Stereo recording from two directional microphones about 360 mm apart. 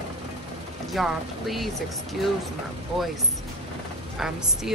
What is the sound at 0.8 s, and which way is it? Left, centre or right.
Speech, centre.